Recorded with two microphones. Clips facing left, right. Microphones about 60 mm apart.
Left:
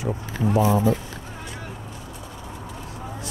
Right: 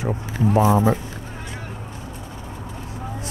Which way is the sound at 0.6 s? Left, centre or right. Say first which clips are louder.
Right 3 dB; right.